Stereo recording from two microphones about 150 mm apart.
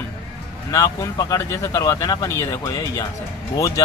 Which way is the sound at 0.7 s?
25° left (ahead or behind).